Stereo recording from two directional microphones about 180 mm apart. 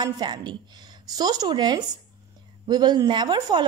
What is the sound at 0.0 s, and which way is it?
A woman's voice, 25° right (ahead or behind).